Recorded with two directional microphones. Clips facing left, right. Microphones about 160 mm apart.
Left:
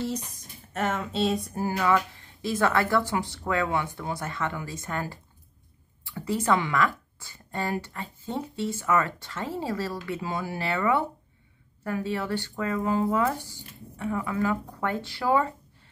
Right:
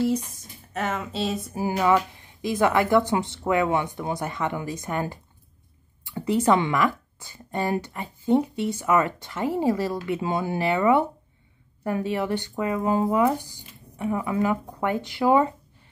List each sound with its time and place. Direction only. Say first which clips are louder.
0.7 s speech: even; centre (ahead or behind)
1.8 s speech: right 4 dB; 20° right (ahead or behind)